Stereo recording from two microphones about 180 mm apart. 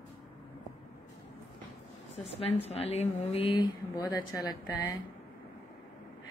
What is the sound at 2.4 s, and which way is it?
Speech, 35° left (ahead or behind).